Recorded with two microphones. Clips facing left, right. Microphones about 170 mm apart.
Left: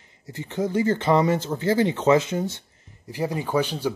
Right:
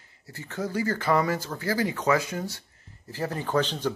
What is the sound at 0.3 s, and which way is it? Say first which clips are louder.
Speech: left 6 dB; 20° left (ahead or behind).